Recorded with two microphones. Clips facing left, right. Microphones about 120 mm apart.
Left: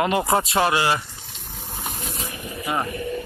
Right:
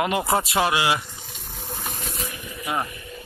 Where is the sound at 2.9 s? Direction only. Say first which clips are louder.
Left 12 dB; 65° left (ahead or behind).